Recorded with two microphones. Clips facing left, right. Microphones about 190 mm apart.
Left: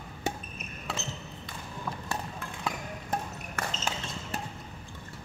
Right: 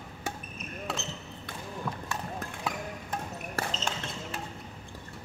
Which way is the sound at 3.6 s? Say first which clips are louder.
Right 1 dB; 35° right (ahead or behind).